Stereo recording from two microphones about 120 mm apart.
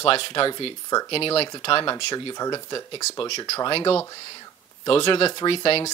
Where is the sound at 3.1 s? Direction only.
45° left (ahead or behind).